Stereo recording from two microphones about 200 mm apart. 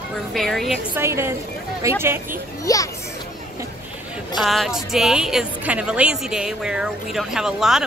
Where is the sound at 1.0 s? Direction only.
10° right (ahead or behind).